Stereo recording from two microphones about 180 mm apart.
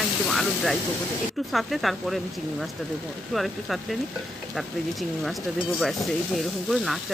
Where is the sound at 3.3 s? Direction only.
Centre (ahead or behind).